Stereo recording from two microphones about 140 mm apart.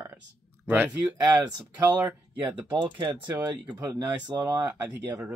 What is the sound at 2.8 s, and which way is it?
Speech, 30° right (ahead or behind).